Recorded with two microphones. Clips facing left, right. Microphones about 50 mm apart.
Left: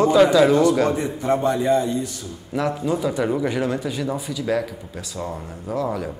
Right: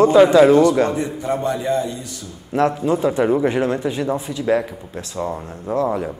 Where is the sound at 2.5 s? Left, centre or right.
Right.